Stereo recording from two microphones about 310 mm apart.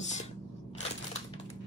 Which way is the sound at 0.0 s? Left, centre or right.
Left.